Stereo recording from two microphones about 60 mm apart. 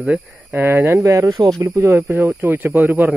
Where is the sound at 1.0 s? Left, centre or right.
Right.